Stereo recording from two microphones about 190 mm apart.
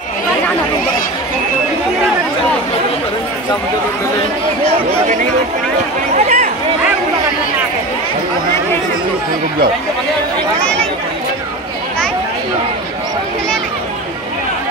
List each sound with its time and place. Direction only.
5.0 s speech: 45° right (ahead or behind)
6.1 s a sound: 35° right (ahead or behind)
10.6 s speech: 5° left (ahead or behind)